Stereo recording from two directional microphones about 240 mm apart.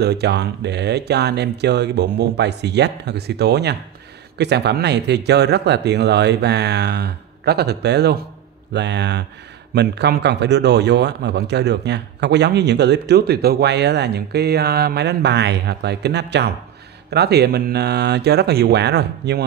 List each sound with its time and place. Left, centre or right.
0.0 s speech: right